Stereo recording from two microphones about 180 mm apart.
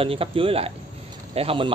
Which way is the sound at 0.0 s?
30° right (ahead or behind).